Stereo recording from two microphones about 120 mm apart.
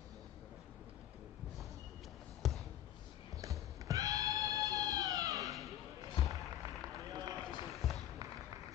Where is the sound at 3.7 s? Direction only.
30° right (ahead or behind).